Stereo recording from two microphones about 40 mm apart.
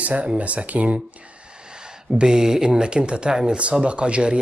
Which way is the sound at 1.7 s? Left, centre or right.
Centre.